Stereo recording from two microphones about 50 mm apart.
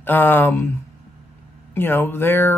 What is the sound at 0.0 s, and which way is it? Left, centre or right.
Speech, left.